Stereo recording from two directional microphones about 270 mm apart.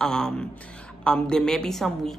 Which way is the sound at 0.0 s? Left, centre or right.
Centre.